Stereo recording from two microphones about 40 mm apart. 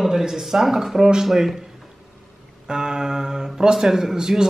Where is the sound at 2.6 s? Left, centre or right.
Centre.